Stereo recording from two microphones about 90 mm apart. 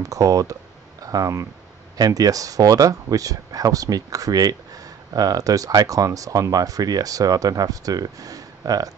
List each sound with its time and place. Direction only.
0.0 s speech: 40° right (ahead or behind)